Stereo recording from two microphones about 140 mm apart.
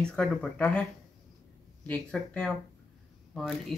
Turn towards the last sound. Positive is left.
turn(degrees=0)  # may be behind; listen again after turning